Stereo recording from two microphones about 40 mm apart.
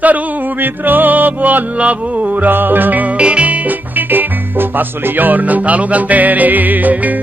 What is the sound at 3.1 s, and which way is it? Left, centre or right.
Music, right.